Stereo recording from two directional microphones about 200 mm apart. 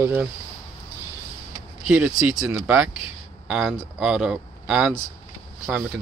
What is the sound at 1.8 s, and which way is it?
Speech, 5° right (ahead or behind).